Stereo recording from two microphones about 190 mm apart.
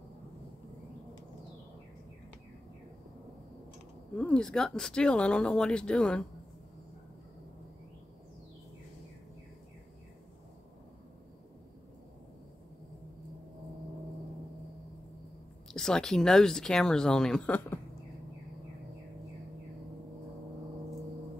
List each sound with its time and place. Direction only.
4.1 s speech: 5° left (ahead or behind)
15.7 s speech: 5° left (ahead or behind)